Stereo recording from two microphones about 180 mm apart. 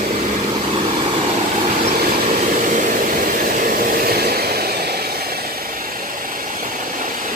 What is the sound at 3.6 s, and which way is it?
Vehicle, 55° right (ahead or behind).